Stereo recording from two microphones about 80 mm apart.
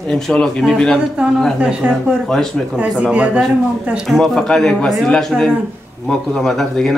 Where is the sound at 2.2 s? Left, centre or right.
Centre.